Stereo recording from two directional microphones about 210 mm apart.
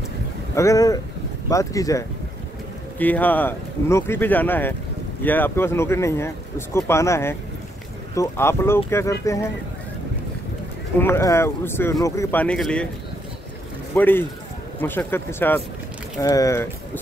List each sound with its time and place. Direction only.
0.6 s speech: 15° left (ahead or behind)
11.0 s speech: 10° left (ahead or behind)
13.9 s speech: 10° left (ahead or behind)